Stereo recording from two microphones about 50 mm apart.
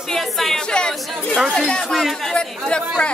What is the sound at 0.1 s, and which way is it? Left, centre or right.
Speech, centre.